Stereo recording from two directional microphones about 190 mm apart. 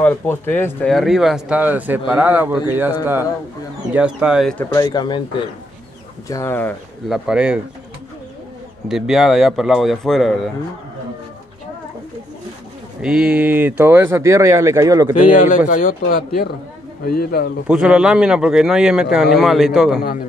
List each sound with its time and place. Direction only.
0.0 s speech: 10° left (ahead or behind); by 2.9 s 10° right (ahead or behind)
3.9 s speech: 5° right (ahead or behind)
4.6 s speech: 20° left (ahead or behind)
6.2 s speech: 15° left (ahead or behind)
7.1 s speech: 5° right (ahead or behind)
8.8 s speech: centre (ahead or behind)
13.0 s speech: 5° right (ahead or behind)
15.3 s speech: 45° left (ahead or behind)
17.6 s speech: 5° right (ahead or behind)